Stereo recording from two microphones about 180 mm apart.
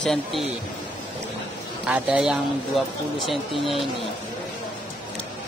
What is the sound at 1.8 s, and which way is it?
Speech, 5° right (ahead or behind).